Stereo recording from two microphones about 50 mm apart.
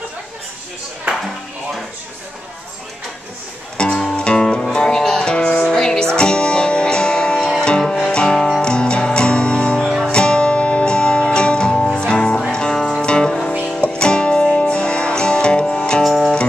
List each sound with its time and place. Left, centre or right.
3.7 s music: centre
16.0 s music: centre